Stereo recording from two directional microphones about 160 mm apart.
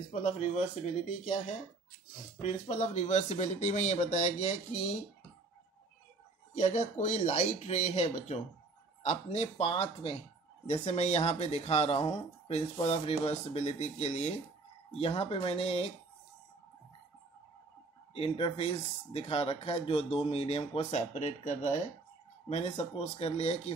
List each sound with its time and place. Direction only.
0.1 s speech: 50° left (ahead or behind)
2.4 s speech: 45° left (ahead or behind)
6.5 s speech: 45° left (ahead or behind)
18.1 s speech: 35° left (ahead or behind)